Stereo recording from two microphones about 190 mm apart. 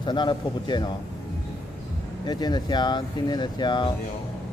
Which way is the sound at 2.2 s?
20° left (ahead or behind).